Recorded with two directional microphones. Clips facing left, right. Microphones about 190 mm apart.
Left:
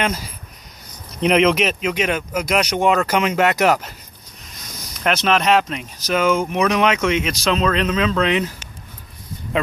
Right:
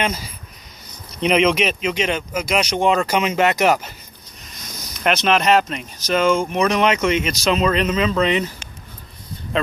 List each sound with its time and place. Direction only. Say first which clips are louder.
0.0 s speech: left 1 dB; centre (ahead or behind)
5.0 s speech: even; centre (ahead or behind)